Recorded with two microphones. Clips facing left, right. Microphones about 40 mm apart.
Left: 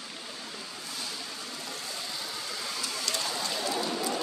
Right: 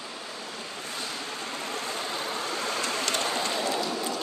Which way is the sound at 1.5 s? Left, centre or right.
Right.